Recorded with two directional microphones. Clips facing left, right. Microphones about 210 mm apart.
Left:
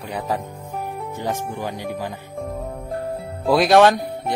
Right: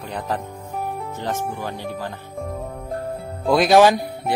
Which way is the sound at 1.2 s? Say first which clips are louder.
Left 1 dB; 15° left (ahead or behind).